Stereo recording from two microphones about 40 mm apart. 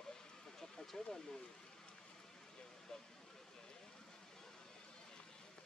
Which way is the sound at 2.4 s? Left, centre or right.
Centre.